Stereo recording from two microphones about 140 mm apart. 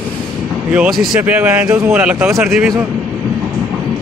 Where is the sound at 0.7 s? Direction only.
5° right (ahead or behind).